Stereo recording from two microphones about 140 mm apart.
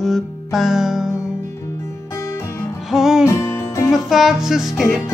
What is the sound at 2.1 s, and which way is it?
Music, 20° left (ahead or behind).